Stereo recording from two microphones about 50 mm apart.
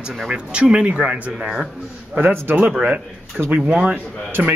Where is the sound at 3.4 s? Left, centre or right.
Right.